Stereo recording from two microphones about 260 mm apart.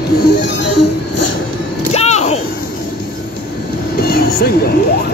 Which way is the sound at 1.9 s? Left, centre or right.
Left.